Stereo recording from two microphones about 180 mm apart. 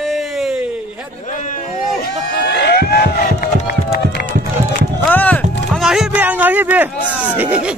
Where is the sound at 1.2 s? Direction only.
45° left (ahead or behind).